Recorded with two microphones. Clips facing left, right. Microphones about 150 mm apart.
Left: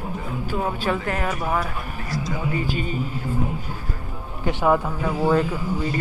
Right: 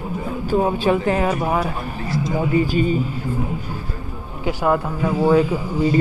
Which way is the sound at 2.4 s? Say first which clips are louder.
Right 10 dB; 40° right (ahead or behind).